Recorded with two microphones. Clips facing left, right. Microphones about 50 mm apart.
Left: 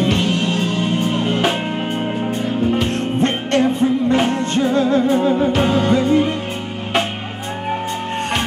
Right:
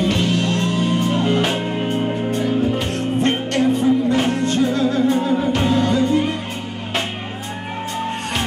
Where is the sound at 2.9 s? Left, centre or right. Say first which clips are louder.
Even; left.